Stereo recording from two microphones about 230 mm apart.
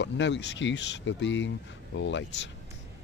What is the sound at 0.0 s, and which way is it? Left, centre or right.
Speech, left.